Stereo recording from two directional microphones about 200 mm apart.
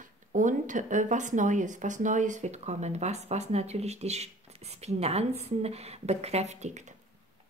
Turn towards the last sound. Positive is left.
turn(degrees=-35)  # may be behind; listen again after turning